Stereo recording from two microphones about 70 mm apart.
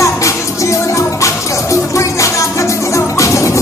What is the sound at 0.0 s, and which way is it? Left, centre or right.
Music, left.